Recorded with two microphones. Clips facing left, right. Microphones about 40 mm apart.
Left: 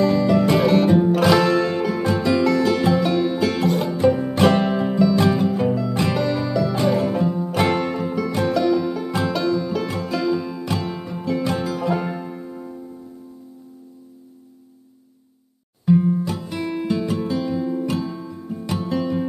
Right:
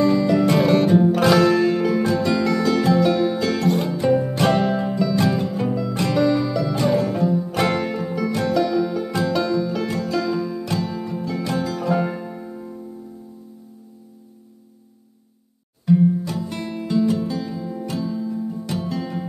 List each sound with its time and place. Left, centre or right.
0.0 s music: centre
7.0 s music: centre
8.3 s music: left
8.5 s music: centre
9.8 s music: centre
10.6 s music: left
11.7 s music: centre
15.8 s music: centre
17.0 s music: left